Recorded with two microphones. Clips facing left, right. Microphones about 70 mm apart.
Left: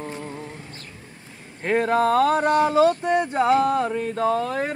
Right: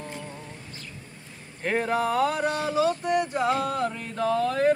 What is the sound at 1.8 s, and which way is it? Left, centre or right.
Speech, left.